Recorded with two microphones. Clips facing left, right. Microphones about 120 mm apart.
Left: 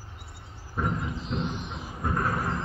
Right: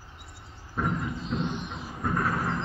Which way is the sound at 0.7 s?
5° left (ahead or behind).